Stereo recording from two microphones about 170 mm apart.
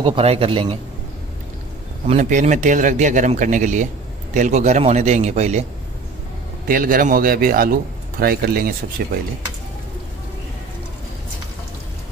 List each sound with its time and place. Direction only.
0.0 s a man's voice: 35° right (ahead or behind)
2.0 s speech: 45° right (ahead or behind)
6.7 s a man's voice: 55° right (ahead or behind)